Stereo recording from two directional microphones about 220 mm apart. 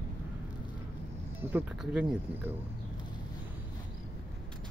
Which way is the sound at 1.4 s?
10° right (ahead or behind).